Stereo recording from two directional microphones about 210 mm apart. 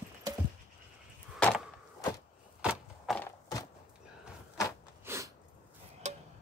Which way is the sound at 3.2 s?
15° left (ahead or behind).